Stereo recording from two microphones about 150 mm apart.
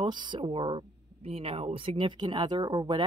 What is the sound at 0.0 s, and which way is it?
Speech, 30° right (ahead or behind).